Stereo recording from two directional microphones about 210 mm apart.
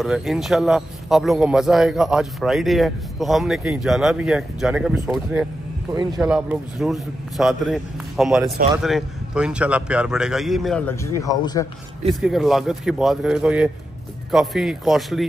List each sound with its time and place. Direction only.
0.0 s speech: centre (ahead or behind)
11.1 s a man's voice: 15° left (ahead or behind)
12.2 s speech: centre (ahead or behind)